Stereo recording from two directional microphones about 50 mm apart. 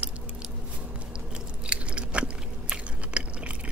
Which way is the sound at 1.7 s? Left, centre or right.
Right.